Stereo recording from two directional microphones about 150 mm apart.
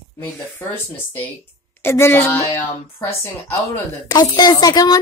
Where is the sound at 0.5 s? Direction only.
15° left (ahead or behind).